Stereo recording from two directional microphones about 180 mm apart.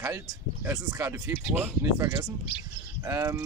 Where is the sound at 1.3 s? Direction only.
15° right (ahead or behind).